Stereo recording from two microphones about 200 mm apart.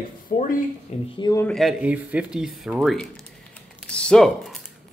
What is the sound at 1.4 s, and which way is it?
Speech, centre (ahead or behind).